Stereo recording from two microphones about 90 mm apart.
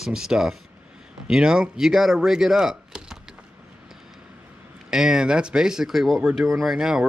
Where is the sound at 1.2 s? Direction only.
10° right (ahead or behind).